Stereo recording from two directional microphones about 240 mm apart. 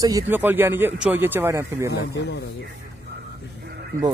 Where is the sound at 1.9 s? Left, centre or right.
Left.